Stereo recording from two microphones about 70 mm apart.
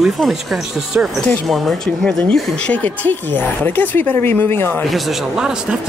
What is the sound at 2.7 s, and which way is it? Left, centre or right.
Speech, left.